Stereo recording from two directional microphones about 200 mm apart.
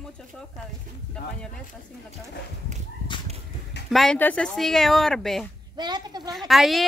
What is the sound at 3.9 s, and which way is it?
Speech, centre (ahead or behind).